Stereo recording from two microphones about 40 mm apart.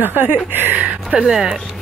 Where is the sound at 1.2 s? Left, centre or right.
Centre.